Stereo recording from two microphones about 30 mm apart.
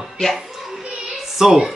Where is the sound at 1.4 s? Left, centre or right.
Centre.